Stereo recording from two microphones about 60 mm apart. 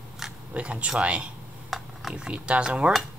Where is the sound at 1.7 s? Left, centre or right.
Centre.